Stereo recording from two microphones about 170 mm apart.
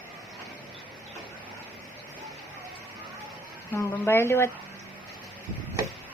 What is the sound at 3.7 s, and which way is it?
Speech, 15° left (ahead or behind).